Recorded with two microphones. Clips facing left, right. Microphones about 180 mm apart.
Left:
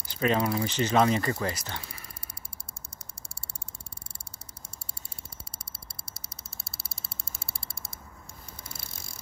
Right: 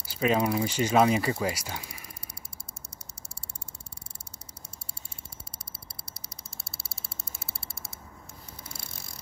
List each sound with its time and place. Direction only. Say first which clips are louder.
0.0 s speech: right 1 dB; 10° right (ahead or behind)
5.9 s a sound: right 1 dB; 25° left (ahead or behind)
6.7 s frog: right 1 dB; 15° left (ahead or behind)